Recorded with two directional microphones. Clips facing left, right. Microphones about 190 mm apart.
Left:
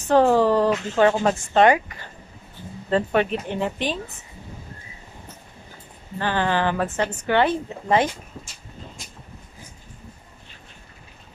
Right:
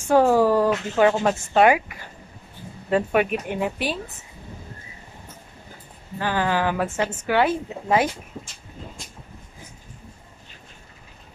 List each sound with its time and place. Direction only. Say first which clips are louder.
0.0 s a sound: even; 10° right (ahead or behind)
0.9 s speech: even; 5° right (ahead or behind)
6.1 s speech: even; 5° right (ahead or behind)